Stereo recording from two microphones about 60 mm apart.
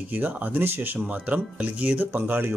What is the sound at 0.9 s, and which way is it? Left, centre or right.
Speech, right.